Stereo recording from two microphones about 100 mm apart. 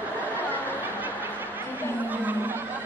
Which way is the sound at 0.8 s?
20° right (ahead or behind).